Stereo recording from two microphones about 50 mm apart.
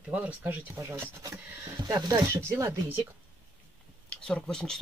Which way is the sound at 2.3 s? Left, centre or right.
Right.